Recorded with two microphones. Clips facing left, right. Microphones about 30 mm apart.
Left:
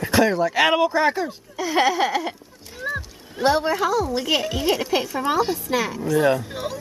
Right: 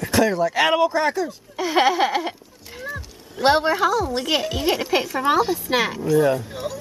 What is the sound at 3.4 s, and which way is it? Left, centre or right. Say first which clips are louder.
Speech: right 2 dB; right.